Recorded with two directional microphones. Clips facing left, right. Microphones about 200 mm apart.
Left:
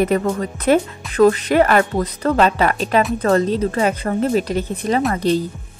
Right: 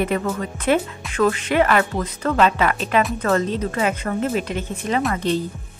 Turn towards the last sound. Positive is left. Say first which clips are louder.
# left 3 dB
turn(degrees=35)  # may be behind; listen again after turning